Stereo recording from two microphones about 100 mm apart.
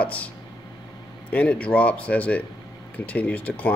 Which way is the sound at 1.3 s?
15° left (ahead or behind).